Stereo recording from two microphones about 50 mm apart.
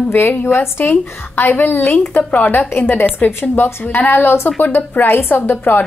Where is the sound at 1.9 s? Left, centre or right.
Left.